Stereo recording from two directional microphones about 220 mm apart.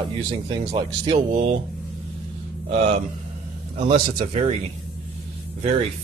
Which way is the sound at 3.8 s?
30° right (ahead or behind).